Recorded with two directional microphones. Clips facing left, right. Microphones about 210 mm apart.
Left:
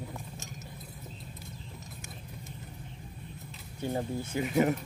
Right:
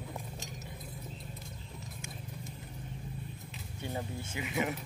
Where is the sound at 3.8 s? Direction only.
35° left (ahead or behind).